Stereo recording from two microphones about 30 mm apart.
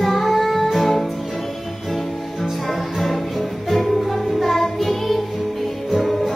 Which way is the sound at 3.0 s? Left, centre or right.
Centre.